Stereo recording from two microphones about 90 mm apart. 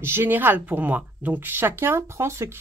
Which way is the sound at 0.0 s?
25° right (ahead or behind).